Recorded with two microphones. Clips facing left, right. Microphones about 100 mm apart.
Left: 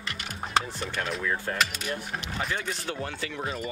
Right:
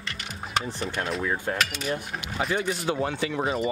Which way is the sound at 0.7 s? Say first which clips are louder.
Right 2 dB; 35° right (ahead or behind).